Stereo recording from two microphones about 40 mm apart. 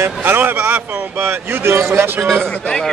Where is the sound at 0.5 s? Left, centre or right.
Right.